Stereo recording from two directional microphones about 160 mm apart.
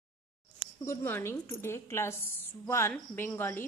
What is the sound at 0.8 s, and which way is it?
A woman's voice, 15° left (ahead or behind).